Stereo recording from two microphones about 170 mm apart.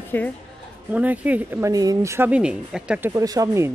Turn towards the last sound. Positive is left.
turn(degrees=-20)  # may be behind; listen again after turning